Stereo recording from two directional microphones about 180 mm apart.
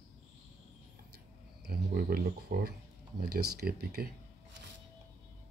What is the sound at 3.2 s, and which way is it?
Speech, 55° right (ahead or behind).